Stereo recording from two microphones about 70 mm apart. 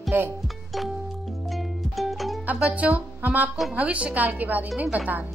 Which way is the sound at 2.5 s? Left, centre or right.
Right.